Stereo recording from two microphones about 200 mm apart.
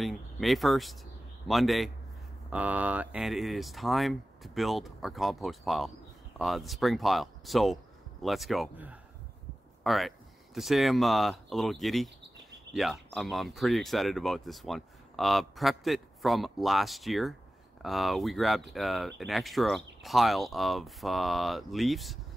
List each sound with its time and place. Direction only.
0.0 s speech: centre (ahead or behind)